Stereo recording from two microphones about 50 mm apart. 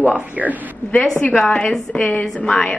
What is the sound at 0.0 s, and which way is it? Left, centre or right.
Speech, right.